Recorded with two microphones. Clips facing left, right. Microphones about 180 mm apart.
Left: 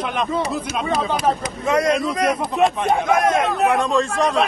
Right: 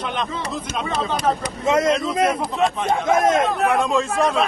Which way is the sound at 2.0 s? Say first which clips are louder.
Even; 25° right (ahead or behind).